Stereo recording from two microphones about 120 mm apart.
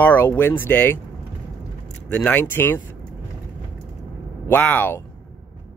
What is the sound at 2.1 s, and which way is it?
Speech, 15° left (ahead or behind).